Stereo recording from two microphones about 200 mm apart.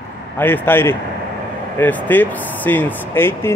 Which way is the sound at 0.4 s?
10° left (ahead or behind).